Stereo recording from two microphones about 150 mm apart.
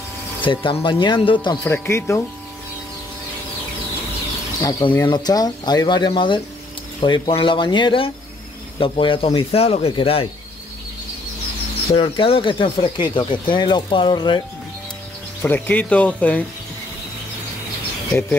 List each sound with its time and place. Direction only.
0.4 s speech: 35° left (ahead or behind)
1.6 s speech: 15° left (ahead or behind)
4.6 s speech: 25° left (ahead or behind)
11.9 s speech: 35° left (ahead or behind)
15.4 s speech: 10° left (ahead or behind)